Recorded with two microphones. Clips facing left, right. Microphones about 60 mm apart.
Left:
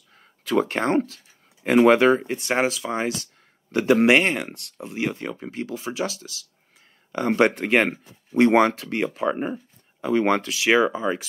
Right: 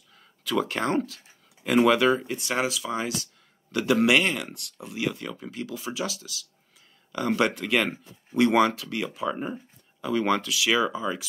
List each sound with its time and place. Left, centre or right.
0.4 s speech: left